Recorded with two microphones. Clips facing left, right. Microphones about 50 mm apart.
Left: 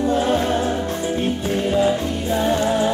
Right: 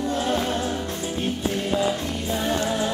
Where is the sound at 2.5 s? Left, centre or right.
Left.